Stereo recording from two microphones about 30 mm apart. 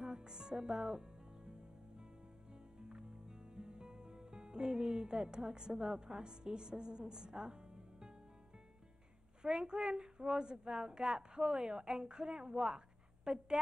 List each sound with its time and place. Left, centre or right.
0.0 s music: right
2.9 s music: right
9.4 s a woman's voice: right